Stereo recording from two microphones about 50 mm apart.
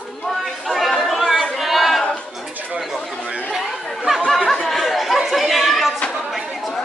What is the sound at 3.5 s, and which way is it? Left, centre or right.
Chatter, centre.